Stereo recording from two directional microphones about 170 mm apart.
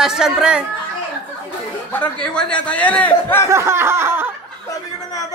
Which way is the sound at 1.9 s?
5° left (ahead or behind).